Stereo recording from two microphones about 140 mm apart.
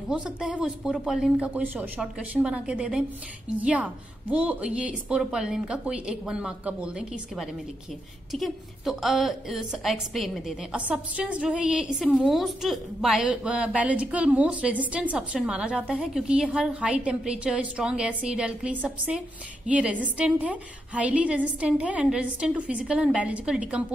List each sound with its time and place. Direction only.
0.1 s a woman's voice: 5° right (ahead or behind)